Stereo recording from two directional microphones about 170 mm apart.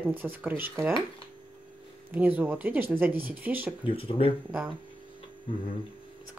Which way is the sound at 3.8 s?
30° left (ahead or behind).